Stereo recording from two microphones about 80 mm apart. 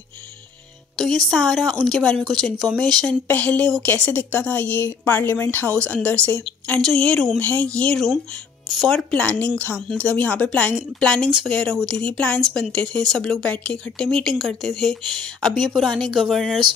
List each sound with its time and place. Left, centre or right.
0.9 s speech: centre
3.3 s speech: centre
7.3 s speech: left
12.4 s speech: centre